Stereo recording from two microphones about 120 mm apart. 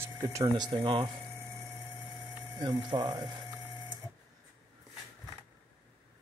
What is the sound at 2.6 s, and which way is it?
Speech, 40° right (ahead or behind).